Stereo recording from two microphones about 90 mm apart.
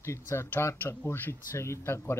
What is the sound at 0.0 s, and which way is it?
Speech, 30° left (ahead or behind).